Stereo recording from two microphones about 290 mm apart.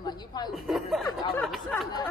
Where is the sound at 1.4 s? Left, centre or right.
Centre.